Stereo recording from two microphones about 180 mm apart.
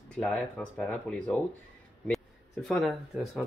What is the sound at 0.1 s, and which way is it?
Speech, 5° left (ahead or behind).